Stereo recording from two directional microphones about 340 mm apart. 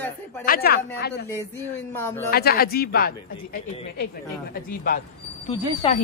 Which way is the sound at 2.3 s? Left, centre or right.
Left.